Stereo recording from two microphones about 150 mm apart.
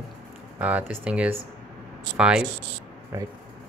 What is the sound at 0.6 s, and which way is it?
Speech, 10° right (ahead or behind).